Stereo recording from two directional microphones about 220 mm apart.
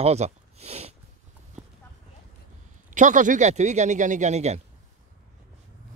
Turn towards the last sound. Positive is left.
turn(degrees=-30)  # may be behind; listen again after turning